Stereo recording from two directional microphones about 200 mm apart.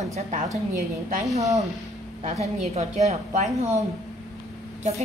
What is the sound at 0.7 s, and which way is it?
Speech, 40° right (ahead or behind).